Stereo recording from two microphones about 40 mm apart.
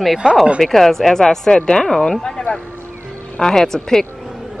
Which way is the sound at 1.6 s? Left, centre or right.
Left.